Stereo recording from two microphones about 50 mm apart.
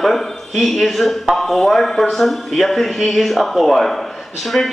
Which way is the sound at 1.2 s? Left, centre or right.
Centre.